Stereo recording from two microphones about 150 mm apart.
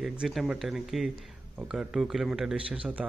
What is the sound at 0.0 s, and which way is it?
A man's voice, centre (ahead or behind).